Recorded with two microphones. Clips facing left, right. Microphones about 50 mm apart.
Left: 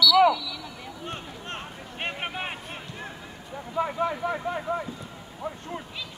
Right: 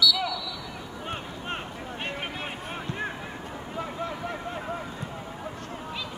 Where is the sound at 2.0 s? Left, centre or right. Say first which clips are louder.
Left 3 dB; left.